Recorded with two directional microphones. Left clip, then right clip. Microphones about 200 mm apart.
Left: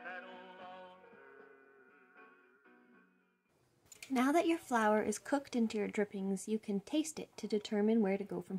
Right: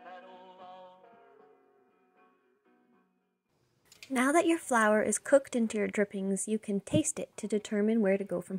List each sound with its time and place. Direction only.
0.2 s music: 5° left (ahead or behind)
4.1 s a woman's voice: 25° right (ahead or behind)